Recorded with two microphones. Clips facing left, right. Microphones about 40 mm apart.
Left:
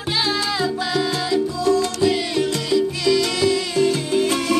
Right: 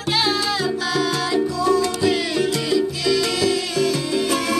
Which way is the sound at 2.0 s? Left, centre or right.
Centre.